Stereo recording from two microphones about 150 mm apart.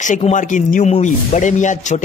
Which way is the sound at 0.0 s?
55° left (ahead or behind).